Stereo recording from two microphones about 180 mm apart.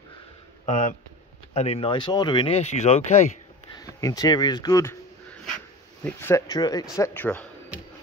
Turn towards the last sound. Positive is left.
turn(degrees=10)  # may be behind; listen again after turning